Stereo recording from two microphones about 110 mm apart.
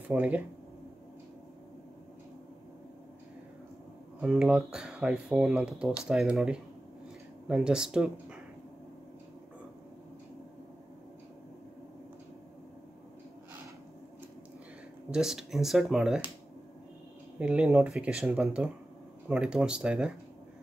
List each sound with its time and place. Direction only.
0.1 s speech: 15° right (ahead or behind)
4.2 s speech: 5° right (ahead or behind)
15.0 s speech: 5° right (ahead or behind)
17.4 s speech: 10° right (ahead or behind)